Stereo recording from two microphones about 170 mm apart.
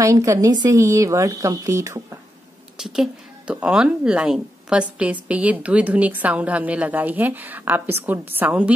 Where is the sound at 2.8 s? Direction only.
5° right (ahead or behind).